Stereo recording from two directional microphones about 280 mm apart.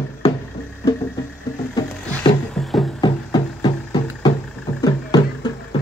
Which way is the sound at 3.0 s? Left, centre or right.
Centre.